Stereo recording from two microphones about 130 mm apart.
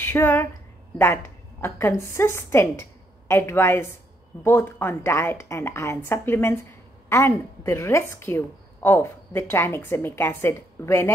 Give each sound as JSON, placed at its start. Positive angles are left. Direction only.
{"t": 0.0, "sound": "a woman's voice", "side_deg": 15}